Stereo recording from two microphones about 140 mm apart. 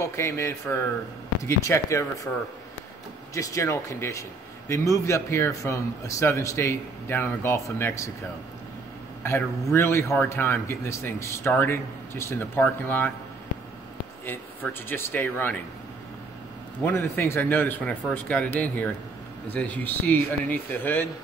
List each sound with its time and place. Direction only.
0.0 s speech: 20° left (ahead or behind)
3.3 s speech: 25° left (ahead or behind)
9.2 s a man's voice: 20° left (ahead or behind)
14.2 s a man's voice: 15° left (ahead or behind)
16.8 s a man's voice: 15° left (ahead or behind)